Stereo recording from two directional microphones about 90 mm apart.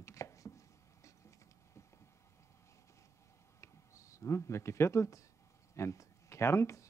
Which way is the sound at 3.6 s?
35° left (ahead or behind).